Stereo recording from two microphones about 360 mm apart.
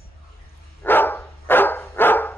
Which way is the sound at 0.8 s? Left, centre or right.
Centre.